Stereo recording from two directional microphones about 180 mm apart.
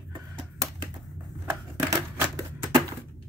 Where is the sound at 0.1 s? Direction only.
20° right (ahead or behind).